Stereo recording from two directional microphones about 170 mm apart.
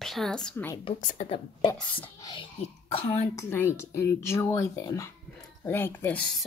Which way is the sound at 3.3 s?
15° left (ahead or behind).